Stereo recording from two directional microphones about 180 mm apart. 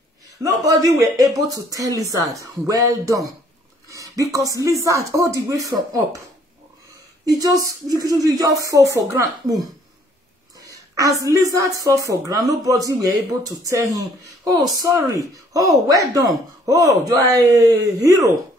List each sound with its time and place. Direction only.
0.4 s a woman's voice: 20° right (ahead or behind)
7.2 s a woman's voice: 20° right (ahead or behind)